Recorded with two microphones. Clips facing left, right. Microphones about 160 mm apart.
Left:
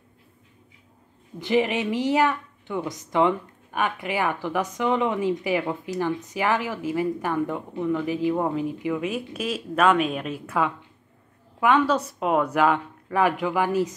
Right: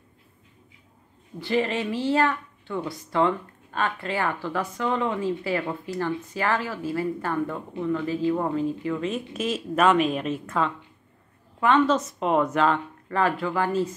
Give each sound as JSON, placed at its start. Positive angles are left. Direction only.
{"t": 1.4, "sound": "a woman's voice", "side_deg": 15}